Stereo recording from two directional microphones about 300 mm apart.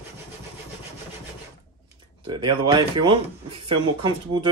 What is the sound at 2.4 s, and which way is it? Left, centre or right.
Speech, centre.